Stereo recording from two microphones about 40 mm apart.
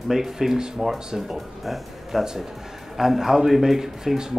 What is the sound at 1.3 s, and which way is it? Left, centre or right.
Speech, centre.